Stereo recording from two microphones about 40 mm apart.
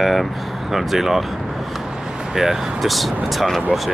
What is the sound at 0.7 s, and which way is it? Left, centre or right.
Speech, centre.